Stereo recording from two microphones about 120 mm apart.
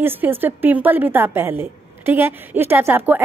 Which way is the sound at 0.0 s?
15° right (ahead or behind).